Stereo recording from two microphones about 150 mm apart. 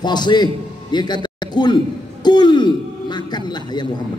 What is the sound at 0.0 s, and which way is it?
A man's voice, 30° left (ahead or behind).